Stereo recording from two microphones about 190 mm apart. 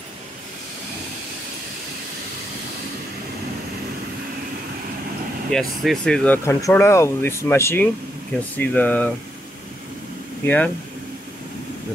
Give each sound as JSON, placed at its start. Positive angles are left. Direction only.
{"t": 5.5, "sound": "speech", "side_deg": 0}
{"t": 10.4, "sound": "speech", "side_deg": 10}